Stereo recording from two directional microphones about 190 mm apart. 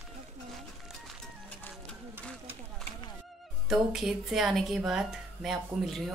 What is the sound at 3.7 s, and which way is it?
Speech, centre (ahead or behind).